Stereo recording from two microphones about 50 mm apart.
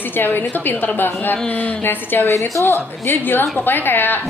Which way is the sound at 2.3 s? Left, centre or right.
Left.